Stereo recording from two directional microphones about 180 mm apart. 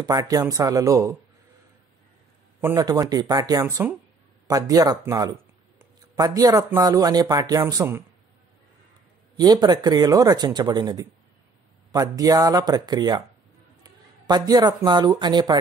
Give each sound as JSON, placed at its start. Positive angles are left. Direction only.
{"t": 0.0, "sound": "speech", "side_deg": -20}
{"t": 2.6, "sound": "speech", "side_deg": -15}
{"t": 9.4, "sound": "speech", "side_deg": -25}